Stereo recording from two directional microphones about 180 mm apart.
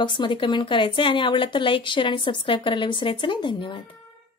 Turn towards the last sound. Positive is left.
turn(degrees=30)  # may be behind; listen again after turning